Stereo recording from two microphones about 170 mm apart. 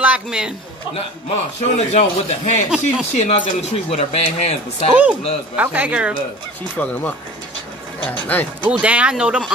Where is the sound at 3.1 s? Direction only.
40° left (ahead or behind).